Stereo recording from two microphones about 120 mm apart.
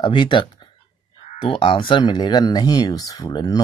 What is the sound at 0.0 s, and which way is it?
Speech, 40° left (ahead or behind).